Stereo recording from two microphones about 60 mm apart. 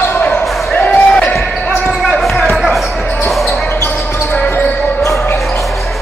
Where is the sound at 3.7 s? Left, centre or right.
Left.